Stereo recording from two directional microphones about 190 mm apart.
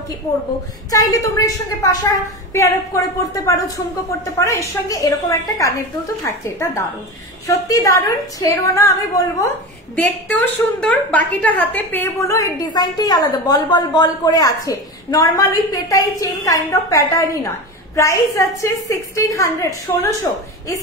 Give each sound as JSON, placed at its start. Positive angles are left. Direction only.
{"t": 0.9, "sound": "a woman's voice", "side_deg": 15}
{"t": 9.9, "sound": "a woman's voice", "side_deg": 5}